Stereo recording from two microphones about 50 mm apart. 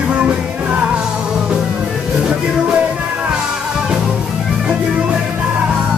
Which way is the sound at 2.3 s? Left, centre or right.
Centre.